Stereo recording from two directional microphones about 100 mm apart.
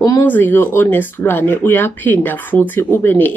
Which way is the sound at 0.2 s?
20° left (ahead or behind).